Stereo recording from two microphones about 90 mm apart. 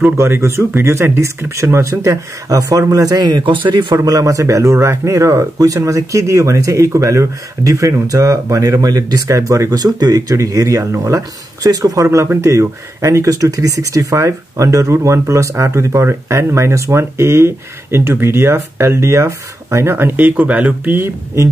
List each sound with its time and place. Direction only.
0.2 s speech: 30° right (ahead or behind)
3.3 s speech: 60° right (ahead or behind)
3.9 s speech: 40° right (ahead or behind); by 21.1 s 20° right (ahead or behind)